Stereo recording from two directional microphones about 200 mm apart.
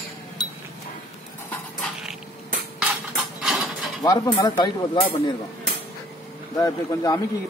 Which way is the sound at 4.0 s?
20° left (ahead or behind).